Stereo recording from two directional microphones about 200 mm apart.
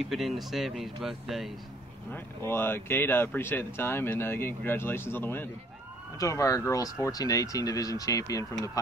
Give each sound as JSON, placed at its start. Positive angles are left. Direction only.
{"t": 0.1, "sound": "speech", "side_deg": 0}
{"t": 2.1, "sound": "speech", "side_deg": 10}